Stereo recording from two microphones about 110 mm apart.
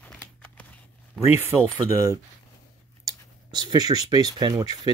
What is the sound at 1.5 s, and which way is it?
Speech, centre (ahead or behind).